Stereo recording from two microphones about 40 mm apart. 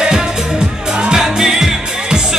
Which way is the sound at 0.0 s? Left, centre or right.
Centre.